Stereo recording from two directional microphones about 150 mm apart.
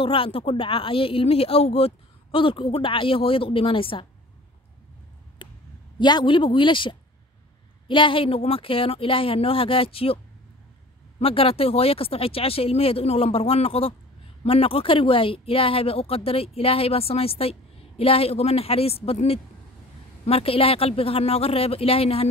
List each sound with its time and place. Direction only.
0.0 s speech: 35° left (ahead or behind)
5.4 s a sound: 30° left (ahead or behind)
5.9 s speech: 30° left (ahead or behind)
11.1 s speech: 40° left (ahead or behind)